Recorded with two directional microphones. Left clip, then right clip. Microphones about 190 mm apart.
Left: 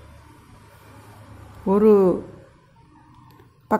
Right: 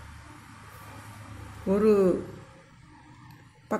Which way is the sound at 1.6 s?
25° left (ahead or behind).